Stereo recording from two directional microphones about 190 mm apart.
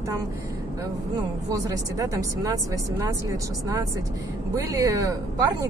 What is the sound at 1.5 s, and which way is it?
A woman's voice, 20° right (ahead or behind).